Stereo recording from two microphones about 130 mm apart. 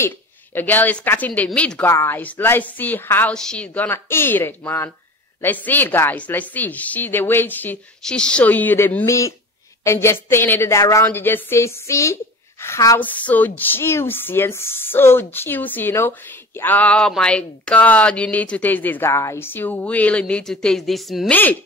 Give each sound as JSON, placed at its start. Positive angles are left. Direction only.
{"t": 0.6, "sound": "speech", "side_deg": 15}
{"t": 1.9, "sound": "a woman's voice", "side_deg": 20}
{"t": 13.1, "sound": "speech", "side_deg": 10}
{"t": 21.3, "sound": "speech", "side_deg": 15}